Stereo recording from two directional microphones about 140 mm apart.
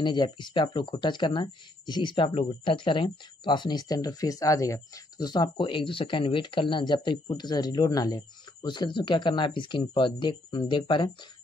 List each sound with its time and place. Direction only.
0.0 s speech: 35° left (ahead or behind)